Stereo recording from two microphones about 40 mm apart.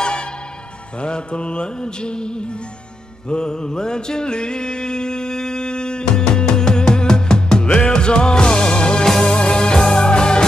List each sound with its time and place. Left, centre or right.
0.0 s music: left